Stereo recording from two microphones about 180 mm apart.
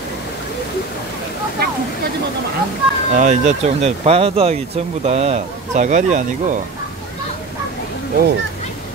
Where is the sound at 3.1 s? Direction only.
45° right (ahead or behind).